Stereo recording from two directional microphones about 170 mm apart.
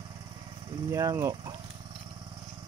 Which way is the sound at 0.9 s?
20° right (ahead or behind).